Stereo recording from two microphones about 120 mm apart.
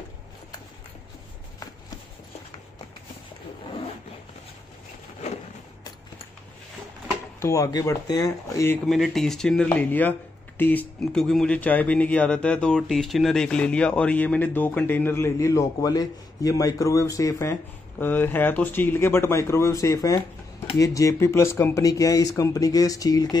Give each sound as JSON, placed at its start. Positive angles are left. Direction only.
{"t": 7.3, "sound": "speech", "side_deg": 25}
{"t": 8.8, "sound": "speech", "side_deg": 0}
{"t": 9.7, "sound": "speech", "side_deg": 15}
{"t": 11.1, "sound": "speech", "side_deg": 5}